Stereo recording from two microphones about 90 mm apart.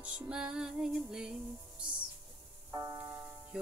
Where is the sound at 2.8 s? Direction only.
25° right (ahead or behind).